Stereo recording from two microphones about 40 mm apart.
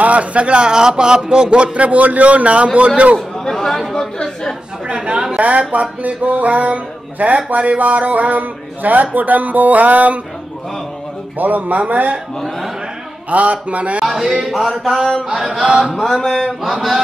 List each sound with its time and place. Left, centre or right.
0.0 s speech: right
3.4 s a woman's voice: centre
4.8 s a woman's voice: right
11.3 s speech: right
12.4 s a woman's voice: centre
13.3 s speech: right
14.0 s speech: centre
15.4 s chant: right
15.8 s mantra: centre